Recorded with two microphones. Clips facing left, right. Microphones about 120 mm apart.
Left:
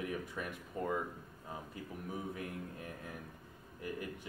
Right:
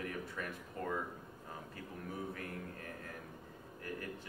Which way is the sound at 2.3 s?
15° left (ahead or behind).